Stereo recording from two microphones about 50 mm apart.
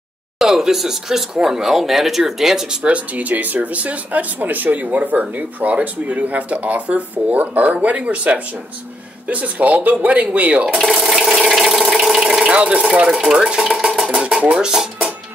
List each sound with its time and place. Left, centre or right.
0.4 s speech: centre
2.8 s speech: right
10.9 s ratchet: centre
11.9 s engine: centre
12.4 s speech: right
12.9 s stir: centre
14.6 s music: centre